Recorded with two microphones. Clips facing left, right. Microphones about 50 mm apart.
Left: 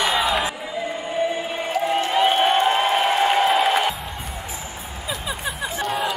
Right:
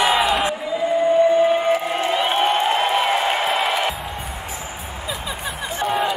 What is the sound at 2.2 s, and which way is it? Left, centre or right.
Music, centre.